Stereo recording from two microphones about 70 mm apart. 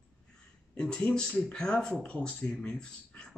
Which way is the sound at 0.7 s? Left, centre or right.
Centre.